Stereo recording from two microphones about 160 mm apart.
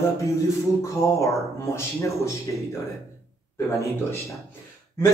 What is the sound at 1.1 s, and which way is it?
Speech, 20° left (ahead or behind).